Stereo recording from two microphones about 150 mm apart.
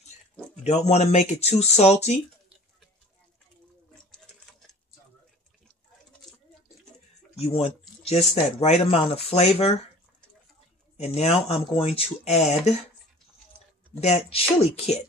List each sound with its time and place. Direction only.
0.7 s speech: 45° left (ahead or behind)
7.3 s speech: 40° left (ahead or behind)
11.0 s speech: 45° left (ahead or behind)
14.0 s speech: 45° left (ahead or behind)